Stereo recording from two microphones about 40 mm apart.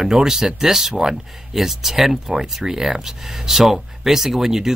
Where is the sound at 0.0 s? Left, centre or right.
Centre.